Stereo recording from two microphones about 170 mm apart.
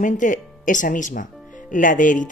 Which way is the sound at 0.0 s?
50° left (ahead or behind).